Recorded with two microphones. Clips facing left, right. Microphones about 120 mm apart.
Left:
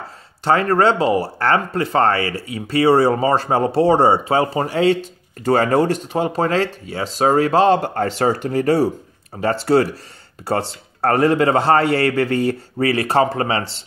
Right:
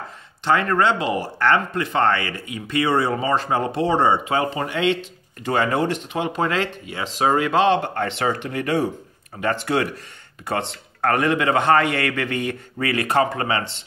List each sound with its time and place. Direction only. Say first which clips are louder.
0.4 s speech: left 3 dB; 35° left (ahead or behind)